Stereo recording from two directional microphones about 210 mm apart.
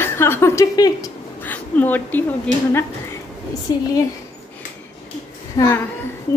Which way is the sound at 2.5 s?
35° right (ahead or behind).